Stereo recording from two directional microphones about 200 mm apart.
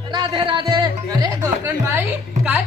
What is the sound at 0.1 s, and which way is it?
Music, 20° right (ahead or behind).